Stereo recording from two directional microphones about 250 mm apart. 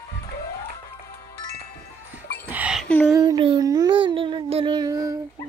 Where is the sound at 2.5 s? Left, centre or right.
Centre.